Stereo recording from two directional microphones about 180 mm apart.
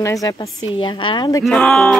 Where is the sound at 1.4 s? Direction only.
Centre (ahead or behind).